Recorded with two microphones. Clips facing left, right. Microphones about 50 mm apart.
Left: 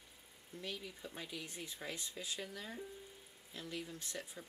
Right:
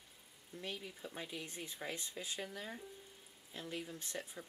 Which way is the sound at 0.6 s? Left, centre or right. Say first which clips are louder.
Even; centre.